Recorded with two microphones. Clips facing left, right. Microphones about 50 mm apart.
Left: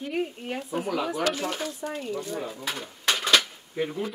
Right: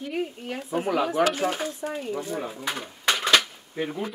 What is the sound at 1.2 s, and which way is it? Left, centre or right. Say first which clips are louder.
Speech: right 4 dB; centre.